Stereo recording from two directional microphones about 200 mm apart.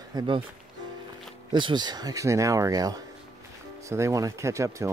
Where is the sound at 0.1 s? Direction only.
20° right (ahead or behind).